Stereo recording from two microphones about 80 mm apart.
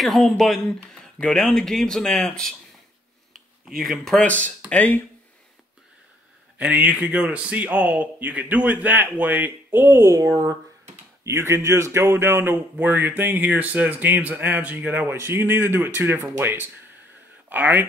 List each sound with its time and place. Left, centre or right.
0.0 s speech: centre
4.6 s speech: centre
6.6 s speech: centre